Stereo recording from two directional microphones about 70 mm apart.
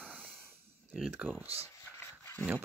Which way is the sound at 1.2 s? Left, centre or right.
Centre.